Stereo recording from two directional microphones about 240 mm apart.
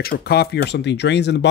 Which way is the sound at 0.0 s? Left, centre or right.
Left.